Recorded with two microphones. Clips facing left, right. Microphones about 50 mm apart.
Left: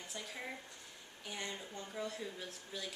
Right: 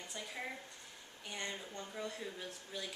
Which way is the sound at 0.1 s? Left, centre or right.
Centre.